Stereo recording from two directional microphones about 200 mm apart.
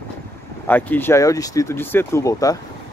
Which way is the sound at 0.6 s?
10° left (ahead or behind).